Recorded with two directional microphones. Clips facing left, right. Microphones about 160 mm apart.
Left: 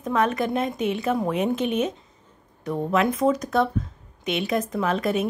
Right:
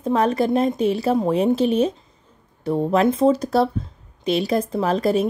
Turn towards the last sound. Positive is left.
turn(degrees=-35)  # may be behind; listen again after turning